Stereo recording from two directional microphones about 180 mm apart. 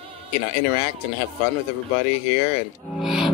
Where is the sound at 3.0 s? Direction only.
Centre (ahead or behind).